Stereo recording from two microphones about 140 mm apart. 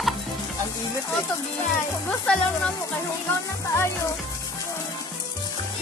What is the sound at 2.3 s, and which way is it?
Speech, 5° left (ahead or behind).